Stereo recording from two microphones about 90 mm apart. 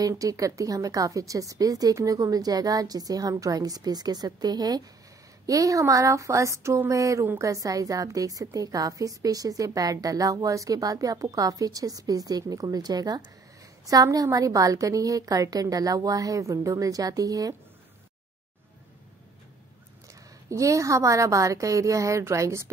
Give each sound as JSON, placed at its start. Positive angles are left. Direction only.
{"t": 0.0, "sound": "a woman's voice", "side_deg": -40}
{"t": 20.4, "sound": "a woman's voice", "side_deg": -35}